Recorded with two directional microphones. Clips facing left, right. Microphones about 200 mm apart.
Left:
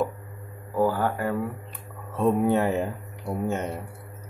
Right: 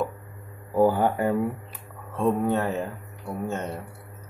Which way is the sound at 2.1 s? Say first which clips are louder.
Left 2 dB; 15° left (ahead or behind).